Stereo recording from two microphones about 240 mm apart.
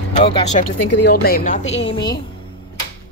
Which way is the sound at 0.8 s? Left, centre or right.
Left.